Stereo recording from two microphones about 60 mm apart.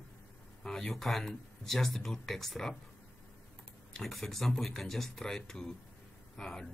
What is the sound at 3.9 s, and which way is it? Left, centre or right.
Speech, centre.